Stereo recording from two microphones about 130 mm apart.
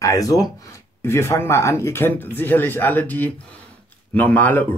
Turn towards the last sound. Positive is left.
turn(degrees=15)  # may be behind; listen again after turning